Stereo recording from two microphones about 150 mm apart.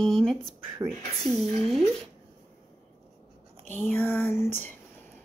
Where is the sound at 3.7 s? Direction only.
15° left (ahead or behind).